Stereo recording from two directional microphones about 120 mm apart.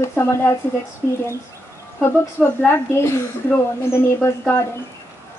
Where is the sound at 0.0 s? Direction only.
20° left (ahead or behind).